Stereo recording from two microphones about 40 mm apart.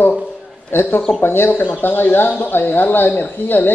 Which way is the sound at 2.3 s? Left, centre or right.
Left.